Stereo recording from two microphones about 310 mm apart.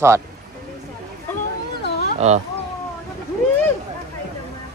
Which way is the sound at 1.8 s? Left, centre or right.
Left.